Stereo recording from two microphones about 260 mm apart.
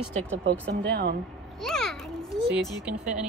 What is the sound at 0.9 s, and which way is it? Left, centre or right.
Speech, right.